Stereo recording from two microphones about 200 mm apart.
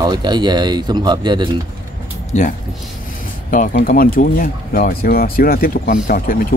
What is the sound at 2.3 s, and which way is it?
Speech, 35° left (ahead or behind).